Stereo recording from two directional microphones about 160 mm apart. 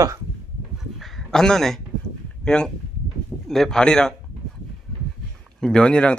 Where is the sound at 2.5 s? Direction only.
5° left (ahead or behind).